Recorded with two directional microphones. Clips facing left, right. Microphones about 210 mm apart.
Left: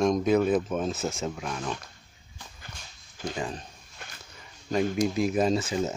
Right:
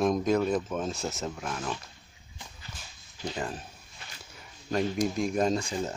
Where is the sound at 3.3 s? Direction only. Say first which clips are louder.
Left 1 dB; centre (ahead or behind).